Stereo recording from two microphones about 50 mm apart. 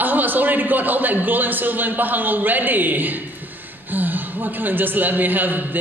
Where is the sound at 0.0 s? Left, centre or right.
Right.